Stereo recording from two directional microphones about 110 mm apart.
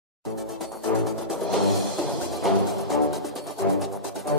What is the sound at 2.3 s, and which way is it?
Music, centre (ahead or behind).